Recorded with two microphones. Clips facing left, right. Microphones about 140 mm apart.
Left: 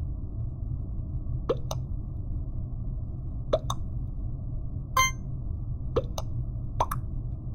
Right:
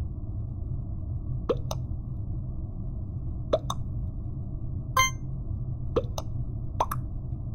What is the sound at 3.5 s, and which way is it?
Plop, centre (ahead or behind).